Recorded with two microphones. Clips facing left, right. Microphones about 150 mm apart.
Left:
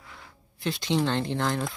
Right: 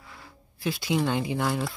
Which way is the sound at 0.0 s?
Centre (ahead or behind).